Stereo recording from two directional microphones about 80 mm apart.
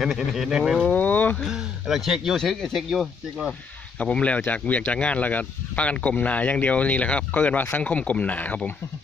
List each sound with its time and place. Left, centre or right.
0.0 s speech: centre
0.8 s speech: centre
1.4 s speech: centre
4.0 s speech: centre